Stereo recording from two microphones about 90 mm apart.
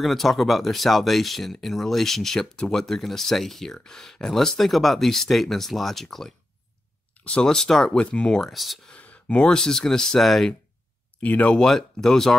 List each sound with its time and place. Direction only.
0.0 s speech: centre (ahead or behind)
8.9 s speech: 15° left (ahead or behind)
11.1 s speech: 15° left (ahead or behind)
11.6 s speech: 5° left (ahead or behind)